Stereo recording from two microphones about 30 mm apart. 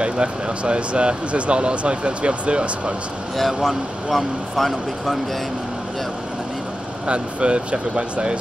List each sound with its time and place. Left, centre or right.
0.0 s speech: right
3.3 s speech: centre
7.1 s speech: right